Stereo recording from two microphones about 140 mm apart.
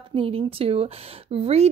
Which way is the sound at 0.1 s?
40° right (ahead or behind).